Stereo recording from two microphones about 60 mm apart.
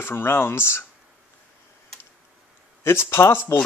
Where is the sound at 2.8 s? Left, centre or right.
Left.